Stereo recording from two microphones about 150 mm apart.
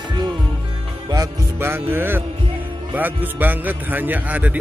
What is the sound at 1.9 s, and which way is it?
Speech, 15° right (ahead or behind).